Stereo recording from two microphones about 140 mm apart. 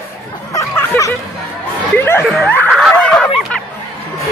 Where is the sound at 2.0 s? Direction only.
15° left (ahead or behind).